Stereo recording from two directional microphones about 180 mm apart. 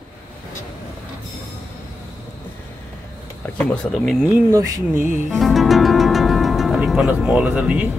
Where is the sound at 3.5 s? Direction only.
5° left (ahead or behind).